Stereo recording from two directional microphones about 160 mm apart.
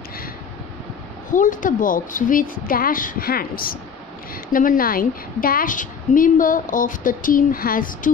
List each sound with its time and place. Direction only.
1.3 s a woman's voice: 55° left (ahead or behind)